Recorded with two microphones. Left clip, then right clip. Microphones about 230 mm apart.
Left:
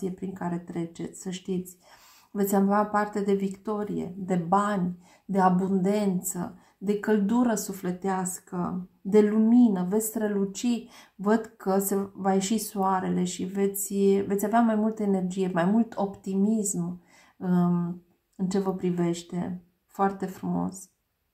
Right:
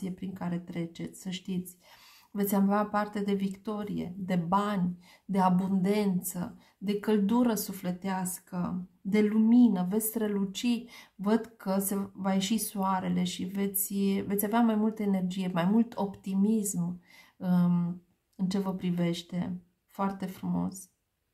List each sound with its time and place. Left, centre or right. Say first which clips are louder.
0.3 s a woman's voice: left 5 dB; right
2.5 s a woman's voice: left 4 dB; right